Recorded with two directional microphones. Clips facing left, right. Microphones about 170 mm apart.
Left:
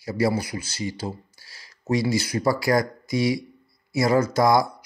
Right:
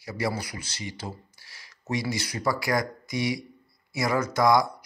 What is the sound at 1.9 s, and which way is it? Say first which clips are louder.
Speech: left 7 dB; 30° left (ahead or behind).